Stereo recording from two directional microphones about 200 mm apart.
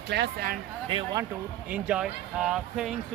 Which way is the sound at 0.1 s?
50° right (ahead or behind).